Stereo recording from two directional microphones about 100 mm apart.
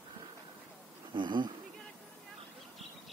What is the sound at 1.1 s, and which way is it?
Speech, 50° right (ahead or behind).